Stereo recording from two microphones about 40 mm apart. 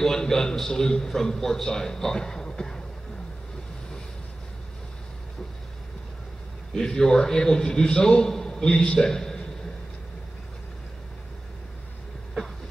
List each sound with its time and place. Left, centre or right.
0.0 s a man's voice: centre
6.7 s a man's voice: centre